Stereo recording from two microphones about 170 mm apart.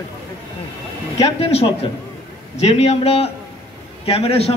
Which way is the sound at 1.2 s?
35° left (ahead or behind).